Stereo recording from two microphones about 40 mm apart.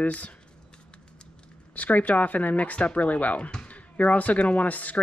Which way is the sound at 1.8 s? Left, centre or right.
Left.